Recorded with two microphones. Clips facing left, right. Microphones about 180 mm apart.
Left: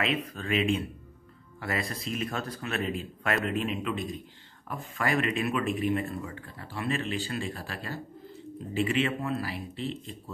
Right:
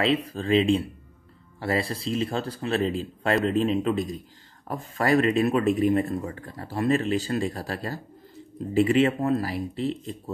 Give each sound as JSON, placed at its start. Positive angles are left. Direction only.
{"t": 0.0, "sound": "speech", "side_deg": -30}